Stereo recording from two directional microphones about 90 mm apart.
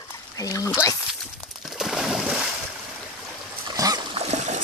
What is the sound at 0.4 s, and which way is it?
Speech, 40° left (ahead or behind).